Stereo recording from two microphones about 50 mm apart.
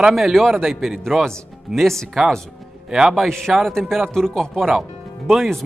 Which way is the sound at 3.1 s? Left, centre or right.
Centre.